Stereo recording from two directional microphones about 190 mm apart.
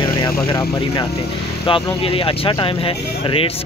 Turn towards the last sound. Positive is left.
turn(degrees=30)  # may be behind; listen again after turning